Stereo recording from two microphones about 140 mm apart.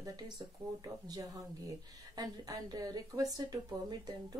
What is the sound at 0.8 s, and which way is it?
Speech, 30° right (ahead or behind).